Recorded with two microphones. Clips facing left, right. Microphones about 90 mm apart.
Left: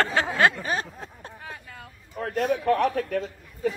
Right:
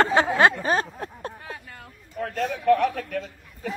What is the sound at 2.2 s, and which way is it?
A man's voice, 30° left (ahead or behind).